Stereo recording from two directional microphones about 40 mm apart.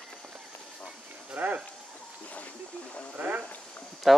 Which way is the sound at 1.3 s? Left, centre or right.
Right.